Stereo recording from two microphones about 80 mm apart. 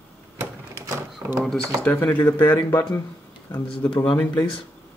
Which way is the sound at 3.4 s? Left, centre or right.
Left.